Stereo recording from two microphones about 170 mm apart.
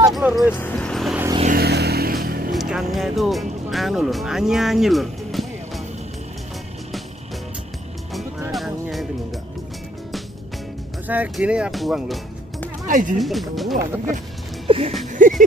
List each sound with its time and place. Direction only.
0.1 s speech: 5° right (ahead or behind)
0.6 s vehicle: 5° left (ahead or behind)
1.6 s vehicle: 70° right (ahead or behind)
2.5 s speech: centre (ahead or behind)
8.5 s music: centre (ahead or behind)
11.1 s speech: 10° right (ahead or behind)
12.8 s speech: 50° right (ahead or behind)
13.2 s speech: centre (ahead or behind)
14.7 s music: 35° right (ahead or behind)
15.2 s a sound: 50° right (ahead or behind)